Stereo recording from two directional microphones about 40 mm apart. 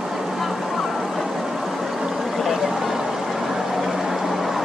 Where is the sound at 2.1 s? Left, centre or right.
Centre.